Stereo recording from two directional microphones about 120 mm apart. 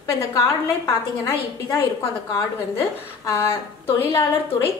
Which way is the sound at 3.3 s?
20° left (ahead or behind).